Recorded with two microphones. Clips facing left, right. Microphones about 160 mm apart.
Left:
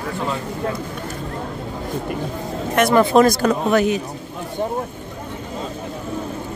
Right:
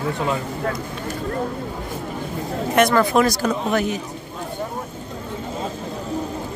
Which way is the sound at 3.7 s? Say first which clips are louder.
Left 6 dB; 90° left.